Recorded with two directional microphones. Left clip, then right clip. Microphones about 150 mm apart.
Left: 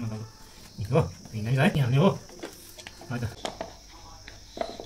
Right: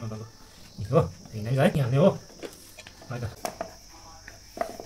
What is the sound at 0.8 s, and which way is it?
Speech, 20° right (ahead or behind).